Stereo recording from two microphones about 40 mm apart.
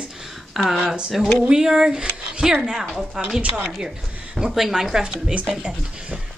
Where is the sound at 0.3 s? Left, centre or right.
Centre.